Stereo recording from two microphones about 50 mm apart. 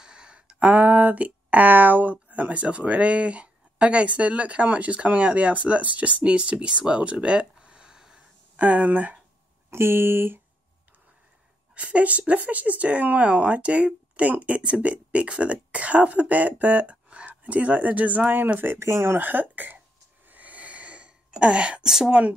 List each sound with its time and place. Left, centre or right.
0.0 s speech: centre
7.5 s a sound: centre
8.5 s speech: right
9.7 s speech: right
11.7 s speech: right
18.8 s speech: right
19.1 s speech: right
20.2 s a sound: right
21.8 s speech: centre